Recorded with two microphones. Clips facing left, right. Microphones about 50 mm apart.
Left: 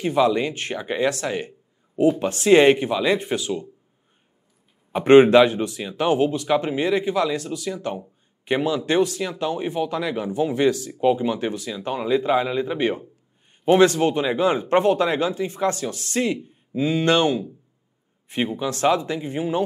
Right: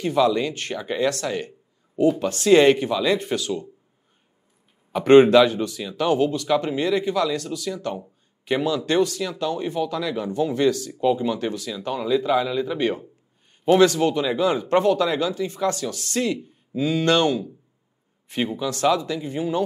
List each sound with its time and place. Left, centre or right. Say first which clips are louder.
0.0 s speech: even; centre
5.0 s speech: left 1 dB; centre